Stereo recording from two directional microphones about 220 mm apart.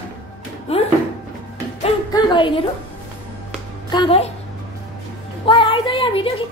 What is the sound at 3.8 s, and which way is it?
Speech, 25° left (ahead or behind).